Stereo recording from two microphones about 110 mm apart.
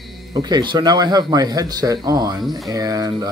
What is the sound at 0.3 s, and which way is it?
Speech, 40° right (ahead or behind).